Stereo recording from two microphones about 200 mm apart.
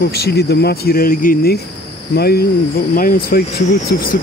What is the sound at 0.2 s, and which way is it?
Speech, 55° left (ahead or behind).